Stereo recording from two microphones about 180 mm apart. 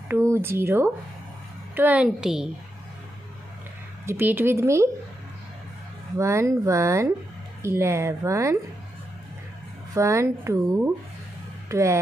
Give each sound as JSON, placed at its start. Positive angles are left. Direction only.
{"t": 0.1, "sound": "a woman's voice", "side_deg": -15}
{"t": 4.0, "sound": "a woman's voice", "side_deg": -15}
{"t": 6.1, "sound": "a woman's voice", "side_deg": -15}
{"t": 9.9, "sound": "a woman's voice", "side_deg": -15}